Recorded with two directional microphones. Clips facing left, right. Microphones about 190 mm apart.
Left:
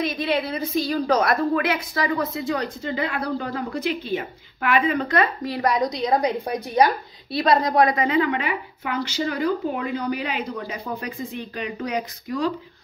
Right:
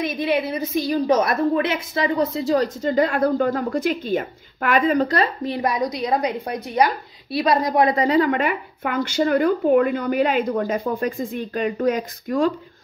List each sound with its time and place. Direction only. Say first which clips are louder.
0.0 s a woman's voice: right 2 dB; 15° right (ahead or behind); by 5.5 s 35° right (ahead or behind)
5.5 s a woman's voice: even; 20° right (ahead or behind)
5.9 s a woman's voice: even; 5° right (ahead or behind)
7.3 s a woman's voice: even; 15° right (ahead or behind)
7.9 s speech: right 3 dB; 35° right (ahead or behind)